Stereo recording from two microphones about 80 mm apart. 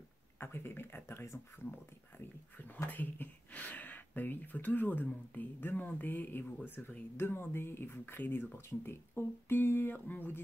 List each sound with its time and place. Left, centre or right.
0.4 s speech: left